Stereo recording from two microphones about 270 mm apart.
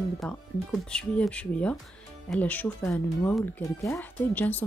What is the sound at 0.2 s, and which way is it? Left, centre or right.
Speech, centre.